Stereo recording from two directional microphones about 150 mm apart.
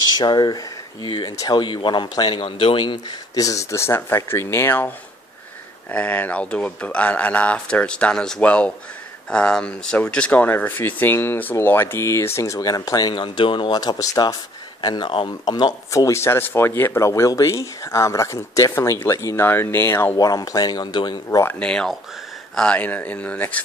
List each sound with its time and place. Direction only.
0.2 s speech: 30° left (ahead or behind)
15.5 s speech: 25° left (ahead or behind)
21.5 s speech: 5° left (ahead or behind)